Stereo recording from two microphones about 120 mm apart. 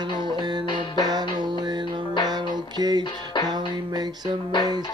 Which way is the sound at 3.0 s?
40° left (ahead or behind).